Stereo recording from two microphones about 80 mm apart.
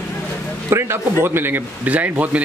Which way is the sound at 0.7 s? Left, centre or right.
Right.